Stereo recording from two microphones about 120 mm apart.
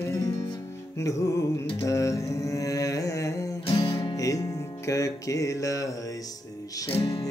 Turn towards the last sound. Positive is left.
turn(degrees=30)  # may be behind; listen again after turning